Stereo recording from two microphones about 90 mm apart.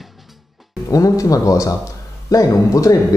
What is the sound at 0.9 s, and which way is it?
Speech, 40° left (ahead or behind).